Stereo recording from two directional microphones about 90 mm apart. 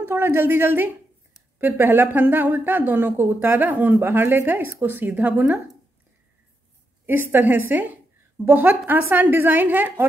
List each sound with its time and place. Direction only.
0.0 s a woman's voice: 25° right (ahead or behind)
7.1 s a woman's voice: 25° right (ahead or behind)